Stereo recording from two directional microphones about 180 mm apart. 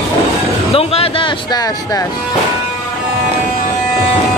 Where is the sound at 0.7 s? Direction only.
30° left (ahead or behind).